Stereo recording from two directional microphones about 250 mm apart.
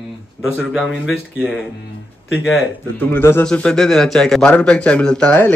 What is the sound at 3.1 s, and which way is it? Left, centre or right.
A man's voice, centre.